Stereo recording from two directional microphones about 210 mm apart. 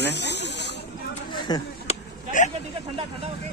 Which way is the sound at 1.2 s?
20° left (ahead or behind).